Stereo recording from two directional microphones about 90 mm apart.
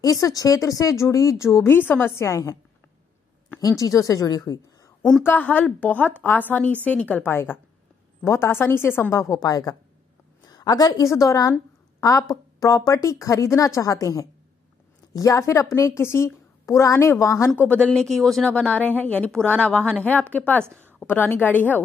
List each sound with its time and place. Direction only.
0.0 s a woman's voice: 40° left (ahead or behind)
5.2 s a woman's voice: 20° left (ahead or behind)
9.1 s a woman's voice: 40° left (ahead or behind)
17.6 s a woman's voice: 15° left (ahead or behind)
18.5 s a woman's voice: 15° left (ahead or behind)